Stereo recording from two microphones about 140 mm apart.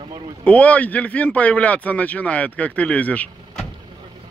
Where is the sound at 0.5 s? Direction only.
10° left (ahead or behind).